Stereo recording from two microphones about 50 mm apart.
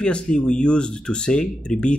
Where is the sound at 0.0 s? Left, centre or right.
Centre.